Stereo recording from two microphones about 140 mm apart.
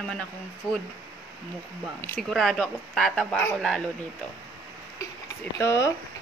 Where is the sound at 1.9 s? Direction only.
15° left (ahead or behind).